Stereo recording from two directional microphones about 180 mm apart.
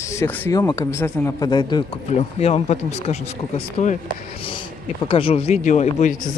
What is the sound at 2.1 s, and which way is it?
Speech, 35° left (ahead or behind).